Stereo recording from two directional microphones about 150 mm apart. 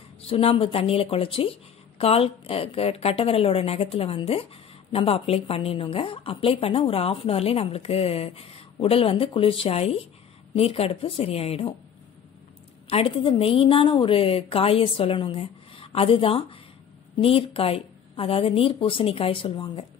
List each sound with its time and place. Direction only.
0.3 s a woman's voice: 40° left (ahead or behind)
12.9 s a woman's voice: 40° left (ahead or behind)